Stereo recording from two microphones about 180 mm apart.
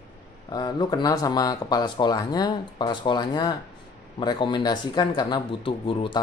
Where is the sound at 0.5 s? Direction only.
25° left (ahead or behind).